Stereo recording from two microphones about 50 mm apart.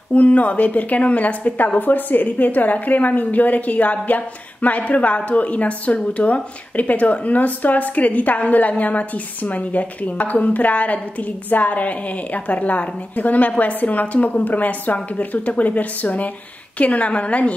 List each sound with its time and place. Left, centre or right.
0.1 s a woman's voice: left